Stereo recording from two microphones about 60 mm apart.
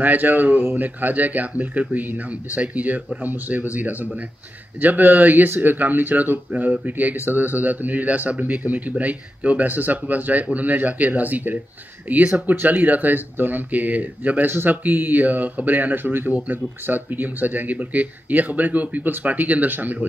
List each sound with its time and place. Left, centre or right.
0.0 s speech: right